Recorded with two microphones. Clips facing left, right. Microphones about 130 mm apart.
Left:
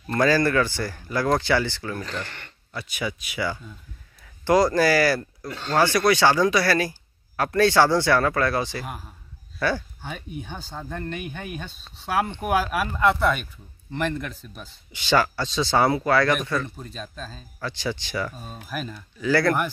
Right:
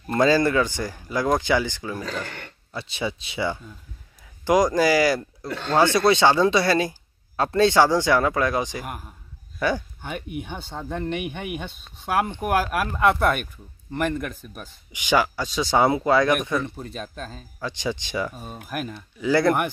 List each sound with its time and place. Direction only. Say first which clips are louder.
0.1 s speech: right 1 dB; 20° right (ahead or behind)
2.7 s speech: right 1 dB; 25° right (ahead or behind)
4.5 s speech: even; 15° right (ahead or behind)
10.1 s speech: right 5 dB; 65° right (ahead or behind)
10.7 s speech: right 5 dB; 20° right (ahead or behind)
12.1 s speech: right 1 dB; 5° right (ahead or behind)
13.1 s speech: right 1 dB; 55° right (ahead or behind)
13.9 s speech: right 2 dB; 10° right (ahead or behind)
16.6 s speech: right 3 dB; 65° right (ahead or behind)
17.6 s speech: right 1 dB; 15° right (ahead or behind)